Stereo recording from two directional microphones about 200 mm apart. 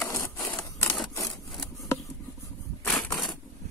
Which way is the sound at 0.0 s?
10° left (ahead or behind).